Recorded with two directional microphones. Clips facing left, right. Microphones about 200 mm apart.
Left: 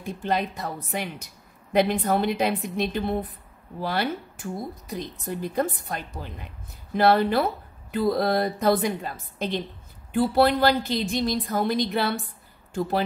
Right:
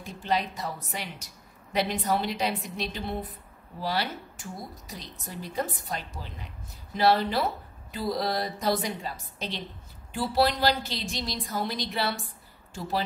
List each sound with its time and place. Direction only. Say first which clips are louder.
0.0 s a woman's voice: left 3 dB; 55° left (ahead or behind)